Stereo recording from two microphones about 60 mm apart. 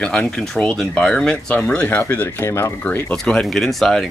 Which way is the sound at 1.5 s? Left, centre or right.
Left.